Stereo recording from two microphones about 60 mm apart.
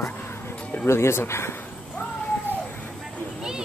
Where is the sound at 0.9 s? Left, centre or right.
Left.